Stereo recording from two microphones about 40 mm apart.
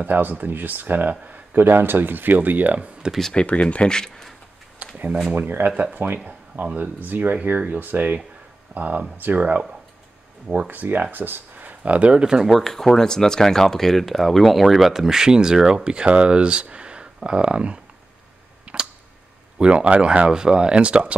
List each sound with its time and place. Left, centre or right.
0.0 s speech: right
3.3 s speech: left
3.7 s speech: left
4.0 s a sound: centre
4.7 s a sound: right
5.9 s speech: right
6.5 s speech: right
6.8 s speech: right
8.7 s speech: right
11.8 s speech: right
12.4 s speech: centre; by 17.7 s right
18.7 s tick-tock: right
19.6 s speech: right
20.2 s speech: centre